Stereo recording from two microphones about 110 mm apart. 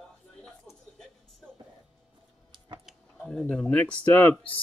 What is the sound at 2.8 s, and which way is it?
Speech, 5° left (ahead or behind).